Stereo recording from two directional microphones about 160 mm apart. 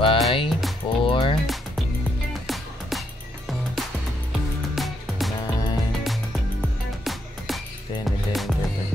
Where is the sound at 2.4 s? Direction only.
Centre (ahead or behind).